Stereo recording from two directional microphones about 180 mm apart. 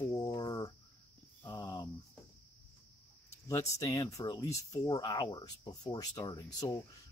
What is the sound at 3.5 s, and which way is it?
Speech, 15° left (ahead or behind).